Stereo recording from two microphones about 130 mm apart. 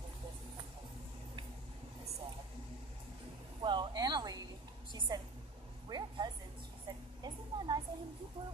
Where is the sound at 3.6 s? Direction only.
35° right (ahead or behind).